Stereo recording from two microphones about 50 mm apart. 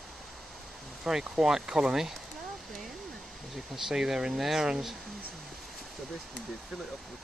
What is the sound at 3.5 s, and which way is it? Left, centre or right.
Speech, centre.